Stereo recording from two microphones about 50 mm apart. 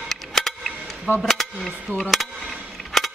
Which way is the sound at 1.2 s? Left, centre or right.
Centre.